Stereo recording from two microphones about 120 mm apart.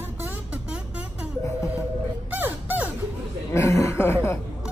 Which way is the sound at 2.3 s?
15° right (ahead or behind).